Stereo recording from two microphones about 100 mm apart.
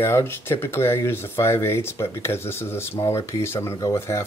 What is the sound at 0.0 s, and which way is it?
Speech, 25° left (ahead or behind).